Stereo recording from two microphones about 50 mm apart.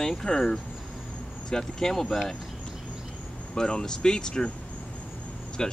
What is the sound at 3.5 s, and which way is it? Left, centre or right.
Speech, centre.